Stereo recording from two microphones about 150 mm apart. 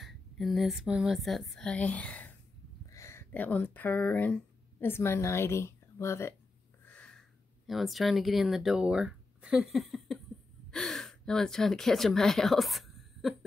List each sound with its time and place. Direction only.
0.0 s a woman's voice: centre (ahead or behind)